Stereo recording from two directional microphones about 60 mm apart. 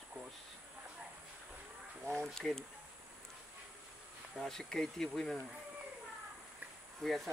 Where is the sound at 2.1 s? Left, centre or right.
Centre.